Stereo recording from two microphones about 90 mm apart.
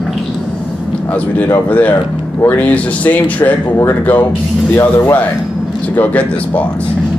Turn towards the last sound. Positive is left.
turn(degrees=15)  # may be behind; listen again after turning